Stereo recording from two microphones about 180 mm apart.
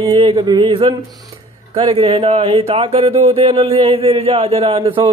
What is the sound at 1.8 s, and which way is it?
Speech, 35° right (ahead or behind).